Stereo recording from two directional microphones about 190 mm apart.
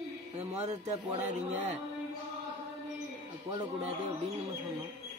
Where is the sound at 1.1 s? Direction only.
35° right (ahead or behind).